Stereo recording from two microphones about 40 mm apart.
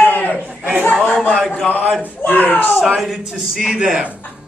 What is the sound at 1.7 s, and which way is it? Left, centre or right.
Speech, left.